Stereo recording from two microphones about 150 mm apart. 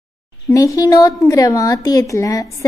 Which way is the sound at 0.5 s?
20° left (ahead or behind).